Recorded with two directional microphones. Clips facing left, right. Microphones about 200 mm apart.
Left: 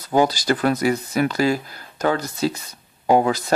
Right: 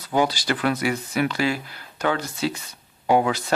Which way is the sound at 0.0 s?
40° left (ahead or behind).